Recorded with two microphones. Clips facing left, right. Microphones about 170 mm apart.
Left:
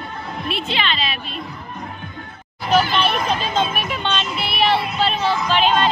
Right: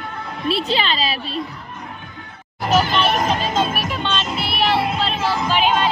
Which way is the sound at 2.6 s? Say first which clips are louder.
Even; 45° right (ahead or behind).